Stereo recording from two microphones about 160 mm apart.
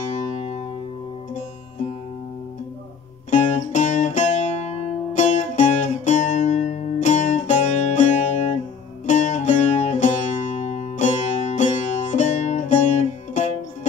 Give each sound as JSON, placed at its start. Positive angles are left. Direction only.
{"t": 0.1, "sound": "music", "side_deg": 45}
{"t": 3.3, "sound": "music", "side_deg": 50}